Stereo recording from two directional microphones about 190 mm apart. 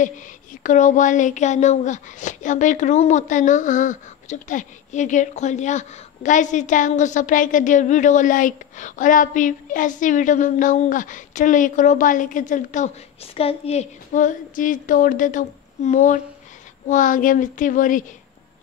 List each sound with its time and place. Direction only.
0.7 s speech: 40° left (ahead or behind)